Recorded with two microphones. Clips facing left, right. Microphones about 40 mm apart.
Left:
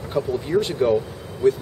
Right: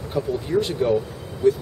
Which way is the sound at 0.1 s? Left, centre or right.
Centre.